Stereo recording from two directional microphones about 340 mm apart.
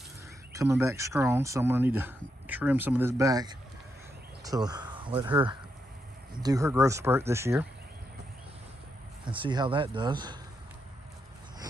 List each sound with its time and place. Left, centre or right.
0.5 s speech: centre
9.2 s speech: centre